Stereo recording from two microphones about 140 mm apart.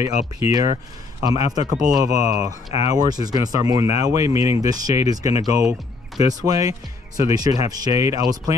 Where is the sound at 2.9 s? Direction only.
30° right (ahead or behind).